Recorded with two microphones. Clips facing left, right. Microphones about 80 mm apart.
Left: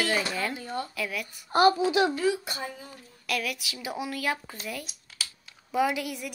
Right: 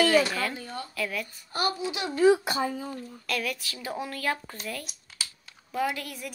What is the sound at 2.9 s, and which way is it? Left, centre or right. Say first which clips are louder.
Speech: even; centre.